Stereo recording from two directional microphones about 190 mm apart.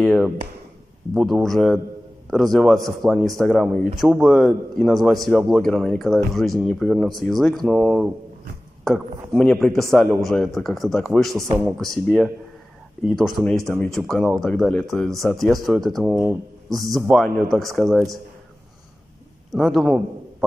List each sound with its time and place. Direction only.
0.0 s speech: 5° left (ahead or behind)
11.4 s speech: 20° right (ahead or behind)
11.7 s speech: centre (ahead or behind)
19.5 s a man's voice: centre (ahead or behind)